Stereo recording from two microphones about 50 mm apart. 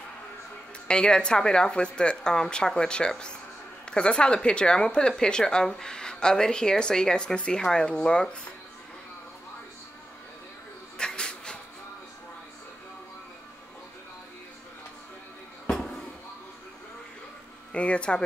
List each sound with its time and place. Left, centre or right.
0.8 s speech: centre
11.0 s a sound: centre
17.7 s speech: left